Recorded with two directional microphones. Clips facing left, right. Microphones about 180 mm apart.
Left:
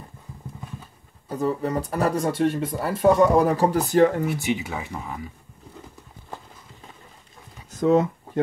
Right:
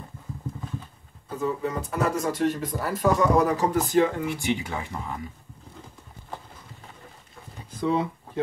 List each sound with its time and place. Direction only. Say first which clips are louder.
1.3 s speech: left 3 dB; 35° left (ahead or behind)
4.5 s speech: left 1 dB; 5° left (ahead or behind)
7.7 s speech: left 6 dB; 45° left (ahead or behind)